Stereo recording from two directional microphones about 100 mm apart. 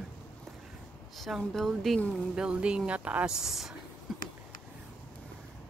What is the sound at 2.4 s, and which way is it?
Speech, 10° right (ahead or behind).